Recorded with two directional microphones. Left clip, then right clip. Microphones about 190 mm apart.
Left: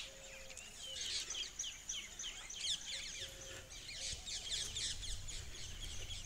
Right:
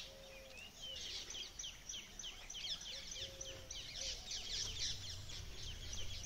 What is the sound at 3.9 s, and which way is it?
Bird, 45° left (ahead or behind).